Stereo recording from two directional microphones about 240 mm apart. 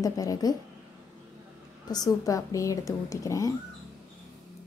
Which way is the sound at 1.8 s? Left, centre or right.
Centre.